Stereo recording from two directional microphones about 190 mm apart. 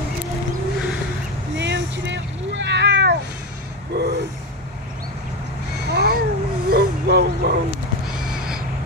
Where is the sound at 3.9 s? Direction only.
60° right (ahead or behind).